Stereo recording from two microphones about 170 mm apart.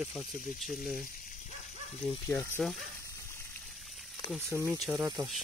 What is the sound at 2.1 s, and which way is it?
Speech, 10° left (ahead or behind).